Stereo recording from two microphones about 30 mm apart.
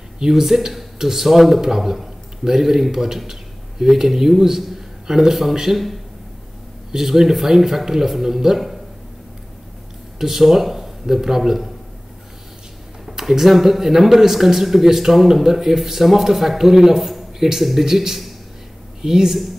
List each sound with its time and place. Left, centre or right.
0.2 s a man's voice: centre
6.9 s speech: centre
10.1 s speech: centre
13.2 s speech: centre